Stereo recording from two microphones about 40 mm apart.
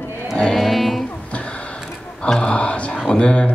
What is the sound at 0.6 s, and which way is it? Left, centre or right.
Music, centre.